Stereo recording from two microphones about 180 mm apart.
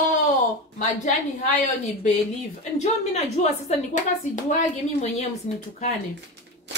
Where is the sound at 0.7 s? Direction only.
45° left (ahead or behind).